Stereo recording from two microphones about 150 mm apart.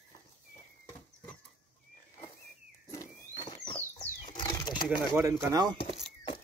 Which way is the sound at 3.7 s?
35° left (ahead or behind).